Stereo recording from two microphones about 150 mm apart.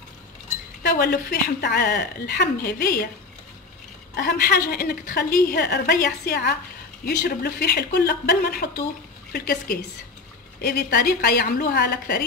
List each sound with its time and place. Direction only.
0.8 s a woman's voice: 90° left
4.2 s a woman's voice: 90° left